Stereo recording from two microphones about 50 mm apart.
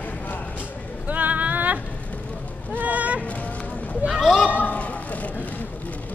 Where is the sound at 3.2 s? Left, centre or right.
Left.